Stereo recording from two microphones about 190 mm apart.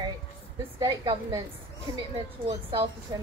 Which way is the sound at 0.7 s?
20° right (ahead or behind).